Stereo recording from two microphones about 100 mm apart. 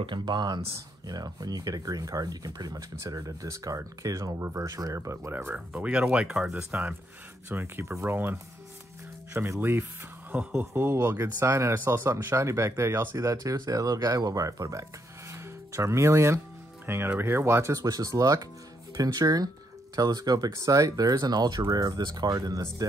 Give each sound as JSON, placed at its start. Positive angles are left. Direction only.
{"t": 0.0, "sound": "speech", "side_deg": -50}
{"t": 10.3, "sound": "speech", "side_deg": -10}
{"t": 10.6, "sound": "speech", "side_deg": -25}